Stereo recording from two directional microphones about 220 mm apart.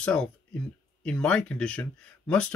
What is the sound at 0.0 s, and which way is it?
Speech, 5° left (ahead or behind).